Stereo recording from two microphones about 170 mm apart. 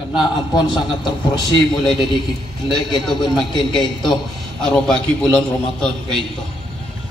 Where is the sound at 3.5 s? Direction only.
25° left (ahead or behind).